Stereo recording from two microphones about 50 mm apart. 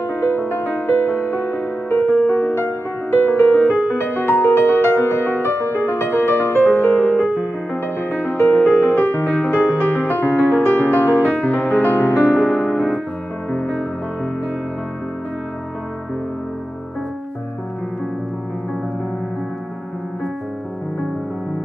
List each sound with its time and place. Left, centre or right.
0.0 s music: left
2.5 s music: left
6.9 s music: left
8.0 s music: left
8.5 s music: left
8.8 s music: left